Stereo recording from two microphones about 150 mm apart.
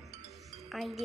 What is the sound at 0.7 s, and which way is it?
Music, centre (ahead or behind).